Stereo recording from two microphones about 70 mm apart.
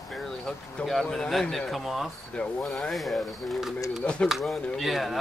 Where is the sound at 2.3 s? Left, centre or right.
Centre.